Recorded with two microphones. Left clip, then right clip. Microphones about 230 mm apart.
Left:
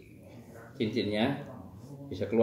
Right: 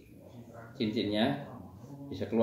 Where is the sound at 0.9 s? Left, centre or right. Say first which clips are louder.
Even; centre.